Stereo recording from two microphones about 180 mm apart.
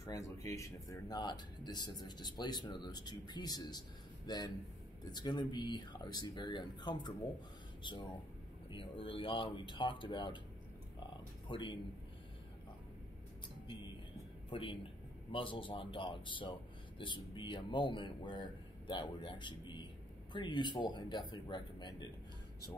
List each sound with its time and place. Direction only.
0.0 s speech: 15° left (ahead or behind)
8.6 s speech: 30° left (ahead or behind)
14.5 s speech: 30° left (ahead or behind)